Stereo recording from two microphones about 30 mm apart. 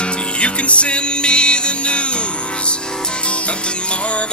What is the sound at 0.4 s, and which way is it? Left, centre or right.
Music, left.